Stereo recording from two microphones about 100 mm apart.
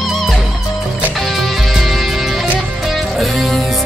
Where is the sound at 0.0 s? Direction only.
Centre (ahead or behind).